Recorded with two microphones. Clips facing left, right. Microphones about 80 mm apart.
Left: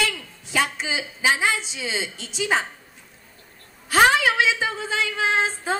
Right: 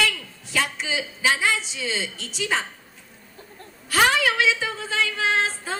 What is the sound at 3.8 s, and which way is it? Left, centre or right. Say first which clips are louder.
A woman's voice: left 3 dB; left.